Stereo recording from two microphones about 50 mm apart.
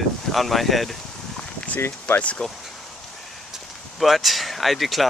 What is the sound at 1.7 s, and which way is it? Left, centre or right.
Speech, left.